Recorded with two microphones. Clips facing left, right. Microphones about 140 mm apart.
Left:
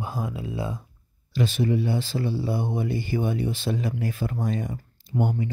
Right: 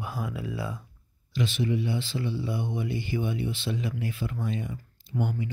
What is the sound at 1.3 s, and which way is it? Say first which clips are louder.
A man's voice: left 4 dB; 40° left (ahead or behind).